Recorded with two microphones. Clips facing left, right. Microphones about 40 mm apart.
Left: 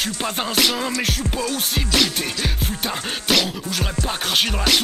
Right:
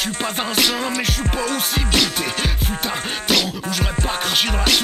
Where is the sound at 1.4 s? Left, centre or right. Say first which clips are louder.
Right 2 dB; right.